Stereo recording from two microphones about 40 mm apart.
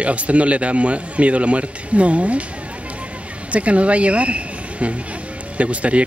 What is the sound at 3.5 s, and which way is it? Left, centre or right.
Speech, right.